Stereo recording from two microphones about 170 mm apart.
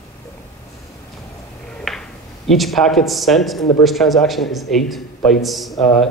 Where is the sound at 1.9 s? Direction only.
Centre (ahead or behind).